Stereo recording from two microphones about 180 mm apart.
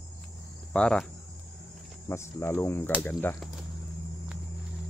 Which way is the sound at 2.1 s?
15° left (ahead or behind).